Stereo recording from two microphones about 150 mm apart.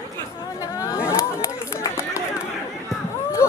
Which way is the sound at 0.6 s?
20° left (ahead or behind).